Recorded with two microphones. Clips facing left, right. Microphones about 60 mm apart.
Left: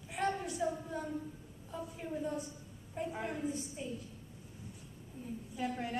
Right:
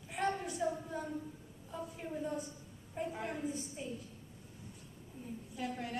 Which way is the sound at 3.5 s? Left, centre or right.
Centre.